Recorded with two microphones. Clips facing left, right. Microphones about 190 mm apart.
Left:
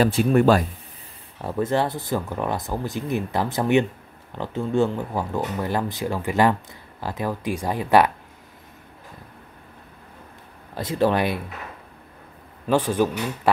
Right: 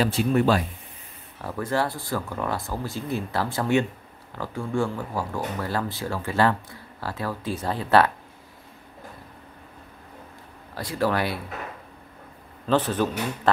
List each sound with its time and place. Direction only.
0.0 s speech: 50° left (ahead or behind)
1.4 s speech: 25° left (ahead or behind)
10.7 s speech: 20° left (ahead or behind)
12.6 s speech: 10° left (ahead or behind)